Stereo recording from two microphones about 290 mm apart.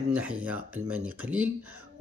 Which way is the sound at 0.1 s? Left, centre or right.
Centre.